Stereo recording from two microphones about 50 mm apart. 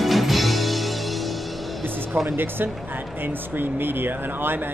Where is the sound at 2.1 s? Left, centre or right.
Right.